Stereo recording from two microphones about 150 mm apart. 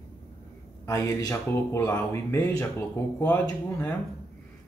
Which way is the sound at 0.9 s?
20° left (ahead or behind).